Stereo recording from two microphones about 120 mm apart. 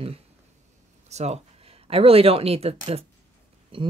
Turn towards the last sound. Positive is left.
turn(degrees=-45)  # may be behind; listen again after turning